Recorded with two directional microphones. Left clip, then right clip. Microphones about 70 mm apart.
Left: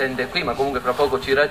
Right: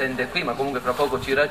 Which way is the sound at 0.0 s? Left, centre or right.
Left.